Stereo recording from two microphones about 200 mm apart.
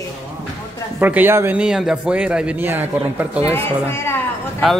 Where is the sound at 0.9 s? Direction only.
10° right (ahead or behind).